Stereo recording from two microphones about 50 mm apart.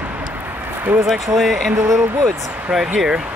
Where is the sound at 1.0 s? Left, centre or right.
Centre.